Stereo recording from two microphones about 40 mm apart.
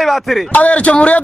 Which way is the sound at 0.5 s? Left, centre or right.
Left.